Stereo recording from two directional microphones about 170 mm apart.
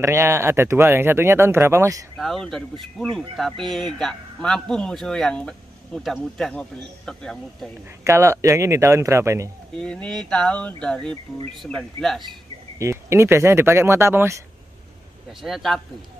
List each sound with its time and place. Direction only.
0.0 s speech: 15° right (ahead or behind)
2.1 s a man's voice: centre (ahead or behind)
8.0 s speech: 15° right (ahead or behind)
9.8 s a man's voice: 5° left (ahead or behind)
12.7 s speech: 15° right (ahead or behind)
15.4 s a man's voice: centre (ahead or behind)